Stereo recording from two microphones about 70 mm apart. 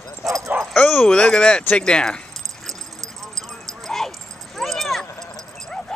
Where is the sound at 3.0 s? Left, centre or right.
Right.